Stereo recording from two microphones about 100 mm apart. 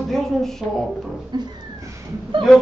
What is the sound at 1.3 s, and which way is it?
Cat, 45° right (ahead or behind).